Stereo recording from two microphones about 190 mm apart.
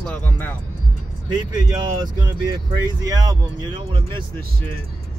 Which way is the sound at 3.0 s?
20° right (ahead or behind).